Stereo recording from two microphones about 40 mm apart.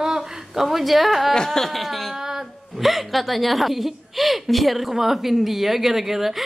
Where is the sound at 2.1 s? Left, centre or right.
Centre.